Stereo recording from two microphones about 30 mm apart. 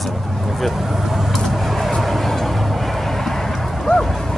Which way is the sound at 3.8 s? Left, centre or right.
Centre.